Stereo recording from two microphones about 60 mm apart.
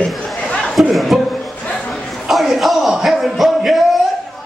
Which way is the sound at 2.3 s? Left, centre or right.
Centre.